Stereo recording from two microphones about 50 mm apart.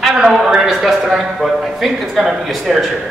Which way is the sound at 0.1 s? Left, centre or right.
Centre.